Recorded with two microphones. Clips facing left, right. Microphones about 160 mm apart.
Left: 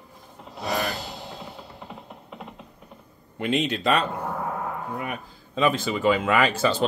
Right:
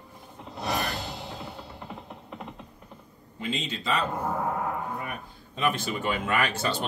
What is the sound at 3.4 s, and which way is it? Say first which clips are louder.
Speech: left 8 dB; 65° left (ahead or behind).